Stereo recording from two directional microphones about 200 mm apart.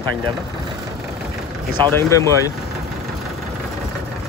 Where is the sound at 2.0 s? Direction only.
15° left (ahead or behind).